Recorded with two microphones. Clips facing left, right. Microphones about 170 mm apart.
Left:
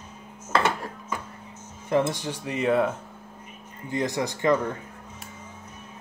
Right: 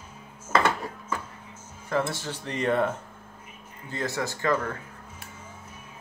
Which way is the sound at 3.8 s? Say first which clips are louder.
Left 4 dB; 15° left (ahead or behind).